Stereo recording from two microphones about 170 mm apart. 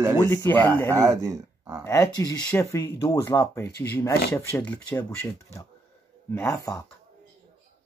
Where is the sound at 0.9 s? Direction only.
20° right (ahead or behind).